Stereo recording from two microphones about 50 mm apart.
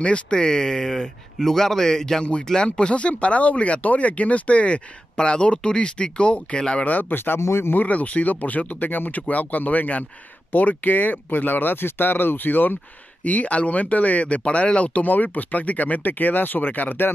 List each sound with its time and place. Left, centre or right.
0.0 s speech: centre
6.9 s speech: left
7.3 s speech: left
7.7 s speech: left
13.2 s speech: left